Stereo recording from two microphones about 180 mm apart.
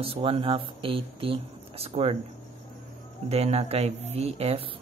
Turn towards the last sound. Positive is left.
turn(degrees=-35)  # may be behind; listen again after turning